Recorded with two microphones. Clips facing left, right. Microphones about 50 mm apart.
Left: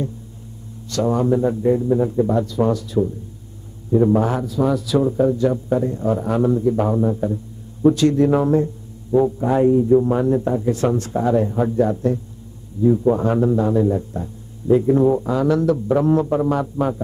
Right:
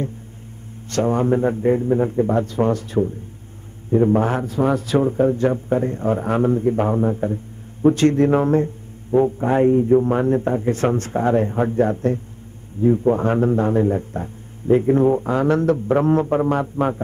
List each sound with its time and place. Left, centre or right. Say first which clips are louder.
0.8 s a man's voice: even; right